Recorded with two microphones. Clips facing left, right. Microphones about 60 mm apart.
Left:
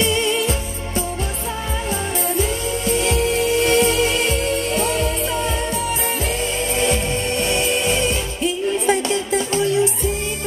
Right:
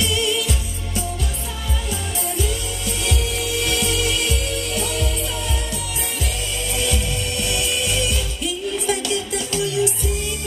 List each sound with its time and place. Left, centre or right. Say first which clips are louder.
0.0 s music: left 3 dB; left
2.9 s music: left 7 dB; left
6.8 s music: left 5 dB; left